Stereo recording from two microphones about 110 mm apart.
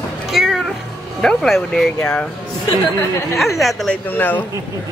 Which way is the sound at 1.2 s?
5° left (ahead or behind).